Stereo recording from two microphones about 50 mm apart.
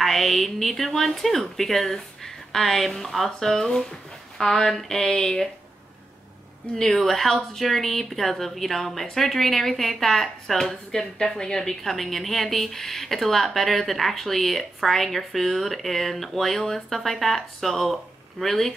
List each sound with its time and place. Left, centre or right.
0.0 s a woman's voice: centre
5.0 s speech: centre
6.7 s a woman's voice: centre